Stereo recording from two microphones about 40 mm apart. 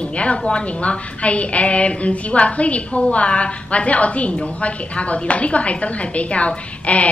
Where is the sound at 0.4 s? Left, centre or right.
Left.